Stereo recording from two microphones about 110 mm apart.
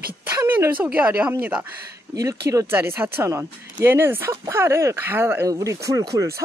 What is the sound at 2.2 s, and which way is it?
Speech, 30° right (ahead or behind).